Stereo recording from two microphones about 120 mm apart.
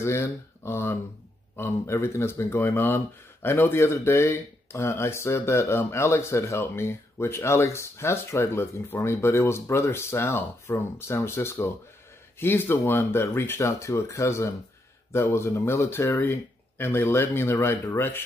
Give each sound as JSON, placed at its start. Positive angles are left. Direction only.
{"t": 0.0, "sound": "speech", "side_deg": 20}